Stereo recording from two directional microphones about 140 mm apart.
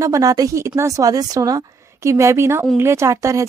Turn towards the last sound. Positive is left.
turn(degrees=-25)  # may be behind; listen again after turning